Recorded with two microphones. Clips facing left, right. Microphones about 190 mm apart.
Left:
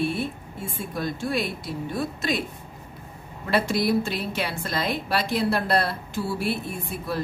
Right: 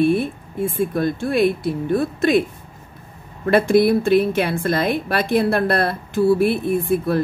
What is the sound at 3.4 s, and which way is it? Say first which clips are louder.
A woman's voice: right 9 dB; 55° right (ahead or behind).